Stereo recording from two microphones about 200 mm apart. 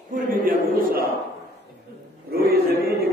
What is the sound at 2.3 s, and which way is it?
Speech, 50° right (ahead or behind).